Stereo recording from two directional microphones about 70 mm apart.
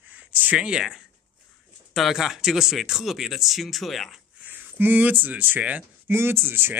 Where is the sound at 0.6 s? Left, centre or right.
Centre.